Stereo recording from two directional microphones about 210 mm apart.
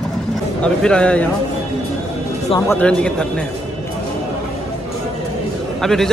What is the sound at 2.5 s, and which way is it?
Speech, 10° left (ahead or behind).